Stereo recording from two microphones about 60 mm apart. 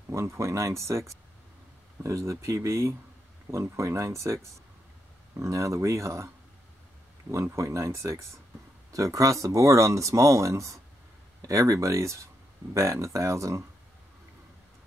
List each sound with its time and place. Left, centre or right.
0.1 s speech: right
7.5 s speech: right
8.9 s speech: right